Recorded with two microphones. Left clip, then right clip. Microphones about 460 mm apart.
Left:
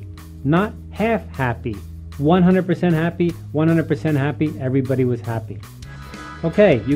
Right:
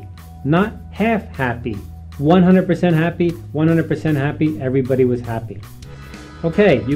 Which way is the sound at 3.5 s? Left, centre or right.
Left.